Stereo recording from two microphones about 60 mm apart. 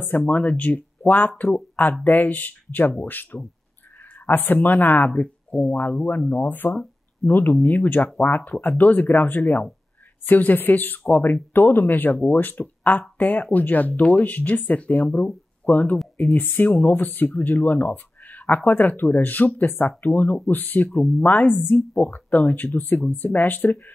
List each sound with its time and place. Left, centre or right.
0.2 s speech: left